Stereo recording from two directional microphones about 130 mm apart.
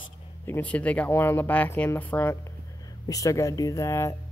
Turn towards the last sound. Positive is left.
turn(degrees=20)  # may be behind; listen again after turning